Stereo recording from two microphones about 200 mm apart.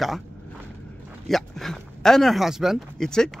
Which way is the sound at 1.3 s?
Centre (ahead or behind).